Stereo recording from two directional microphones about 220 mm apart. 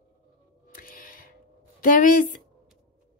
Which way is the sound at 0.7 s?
40° left (ahead or behind).